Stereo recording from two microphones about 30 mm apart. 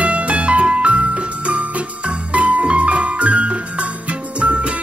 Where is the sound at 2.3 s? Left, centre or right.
Right.